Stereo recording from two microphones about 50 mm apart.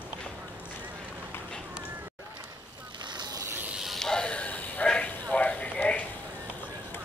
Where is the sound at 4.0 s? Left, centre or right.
Centre.